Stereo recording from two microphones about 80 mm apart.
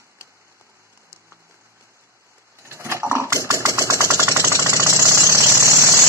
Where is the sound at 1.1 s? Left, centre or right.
Right.